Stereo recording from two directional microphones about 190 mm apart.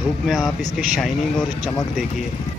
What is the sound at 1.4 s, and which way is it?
Speech, 20° left (ahead or behind).